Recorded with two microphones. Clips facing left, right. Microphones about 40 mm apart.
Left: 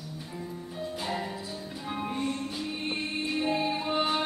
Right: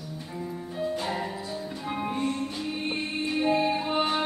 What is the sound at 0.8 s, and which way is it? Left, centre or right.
Music, centre.